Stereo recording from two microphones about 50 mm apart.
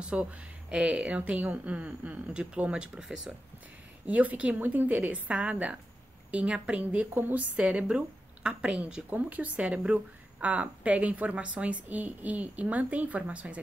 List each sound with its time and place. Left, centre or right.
0.0 s a woman's voice: right
2.9 s speech: centre
4.0 s a woman's voice: right
7.2 s a woman's voice: right
7.5 s a woman's voice: right
9.1 s a woman's voice: right